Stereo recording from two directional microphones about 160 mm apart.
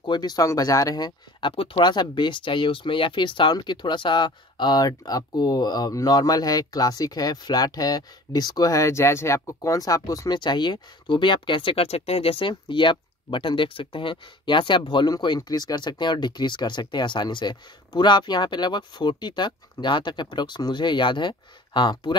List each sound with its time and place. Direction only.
0.0 s speech: 25° left (ahead or behind)